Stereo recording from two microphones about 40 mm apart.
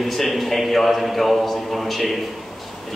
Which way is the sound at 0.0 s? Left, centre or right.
Centre.